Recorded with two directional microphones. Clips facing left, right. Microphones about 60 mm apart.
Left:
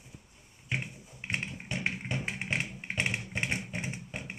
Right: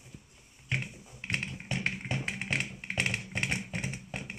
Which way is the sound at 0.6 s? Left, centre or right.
Centre.